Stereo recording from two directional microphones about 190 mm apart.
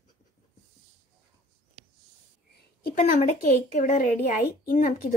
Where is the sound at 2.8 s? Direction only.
45° left (ahead or behind).